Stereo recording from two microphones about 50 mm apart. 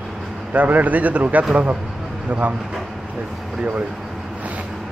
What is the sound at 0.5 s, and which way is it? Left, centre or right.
Speech, right.